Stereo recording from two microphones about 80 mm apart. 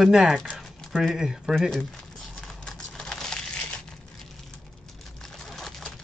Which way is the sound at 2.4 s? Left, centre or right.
Centre.